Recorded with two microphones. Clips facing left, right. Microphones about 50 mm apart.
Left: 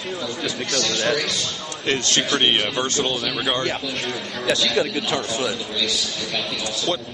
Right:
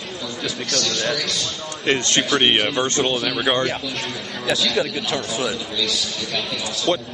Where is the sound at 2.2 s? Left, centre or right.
Centre.